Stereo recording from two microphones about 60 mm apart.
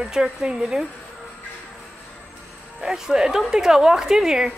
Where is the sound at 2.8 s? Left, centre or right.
Centre.